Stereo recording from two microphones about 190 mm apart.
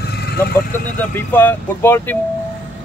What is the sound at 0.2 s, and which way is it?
Vehicle, 55° left (ahead or behind).